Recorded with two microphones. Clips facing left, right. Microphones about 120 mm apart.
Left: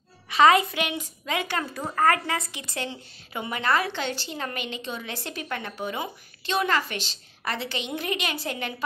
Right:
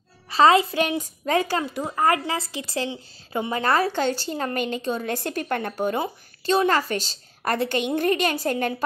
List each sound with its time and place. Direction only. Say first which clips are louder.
0.3 s a woman's voice: right 2 dB; 30° right (ahead or behind)
2.0 s a woman's voice: right 1 dB; 20° right (ahead or behind); by 8.8 s 45° right (ahead or behind)